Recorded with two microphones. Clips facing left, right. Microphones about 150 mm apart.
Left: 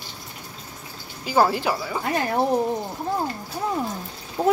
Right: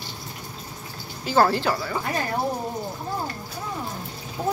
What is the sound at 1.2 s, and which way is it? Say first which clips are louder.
Speech: even; 10° left (ahead or behind).